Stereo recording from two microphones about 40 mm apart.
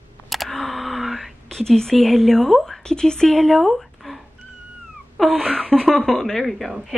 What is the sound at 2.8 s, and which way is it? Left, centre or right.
A woman's voice, centre.